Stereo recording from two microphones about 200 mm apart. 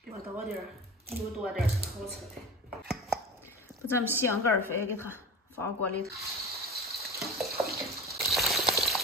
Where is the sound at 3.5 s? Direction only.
10° left (ahead or behind).